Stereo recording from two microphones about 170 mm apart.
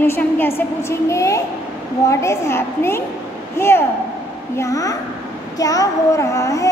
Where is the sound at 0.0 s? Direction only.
10° left (ahead or behind).